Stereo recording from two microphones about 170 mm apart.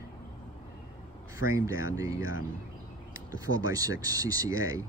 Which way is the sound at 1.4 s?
15° right (ahead or behind).